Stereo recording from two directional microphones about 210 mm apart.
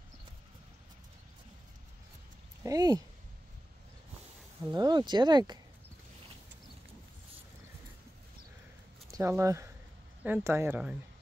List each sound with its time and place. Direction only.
2.6 s speech: 20° right (ahead or behind)
4.6 s speech: 20° right (ahead or behind)
9.1 s speech: 15° right (ahead or behind)